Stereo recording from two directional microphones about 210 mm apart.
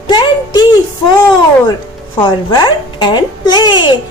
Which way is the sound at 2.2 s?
20° left (ahead or behind).